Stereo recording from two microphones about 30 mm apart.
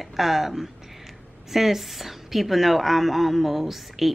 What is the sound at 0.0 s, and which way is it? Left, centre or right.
Speech, centre.